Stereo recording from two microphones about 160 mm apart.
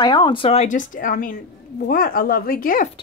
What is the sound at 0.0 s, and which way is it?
A woman's voice, 30° left (ahead or behind).